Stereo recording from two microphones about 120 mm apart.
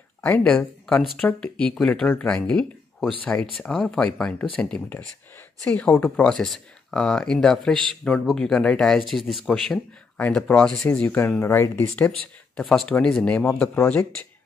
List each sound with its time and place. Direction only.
0.2 s speech: 10° left (ahead or behind)
9.5 s speech: 10° left (ahead or behind)